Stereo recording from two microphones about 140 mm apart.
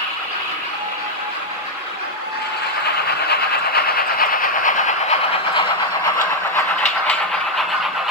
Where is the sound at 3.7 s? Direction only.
90° left; by 5.2 s 65° left (ahead or behind).